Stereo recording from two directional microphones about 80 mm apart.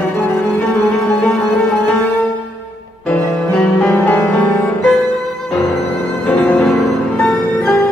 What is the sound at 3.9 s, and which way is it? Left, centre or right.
Music, left.